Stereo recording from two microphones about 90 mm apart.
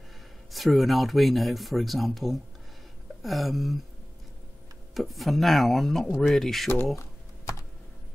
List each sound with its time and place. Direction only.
0.5 s speech: centre (ahead or behind)
4.9 s speech: centre (ahead or behind)
7.0 s typing: 35° left (ahead or behind)